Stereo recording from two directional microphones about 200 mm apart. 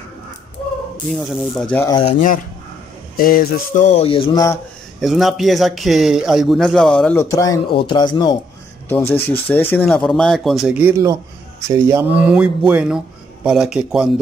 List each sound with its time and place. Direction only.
1.3 s speech: centre (ahead or behind)
1.9 s speech: 20° left (ahead or behind)
2.1 s speech: 45° left (ahead or behind)
3.2 s a sound: 45° left (ahead or behind); by 4.6 s 20° left (ahead or behind)
5.0 s speech: centre (ahead or behind)